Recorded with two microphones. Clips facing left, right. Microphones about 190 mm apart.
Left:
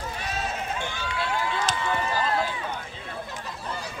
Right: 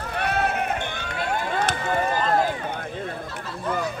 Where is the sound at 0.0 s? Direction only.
60° right (ahead or behind).